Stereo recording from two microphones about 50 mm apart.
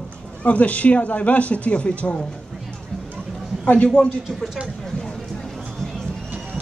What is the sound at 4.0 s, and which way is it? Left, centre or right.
Speech, left.